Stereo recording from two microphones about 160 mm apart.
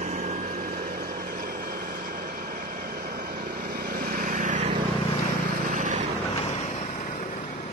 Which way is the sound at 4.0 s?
55° right (ahead or behind).